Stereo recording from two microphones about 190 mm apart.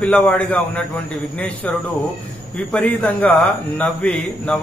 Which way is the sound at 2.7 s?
5° left (ahead or behind).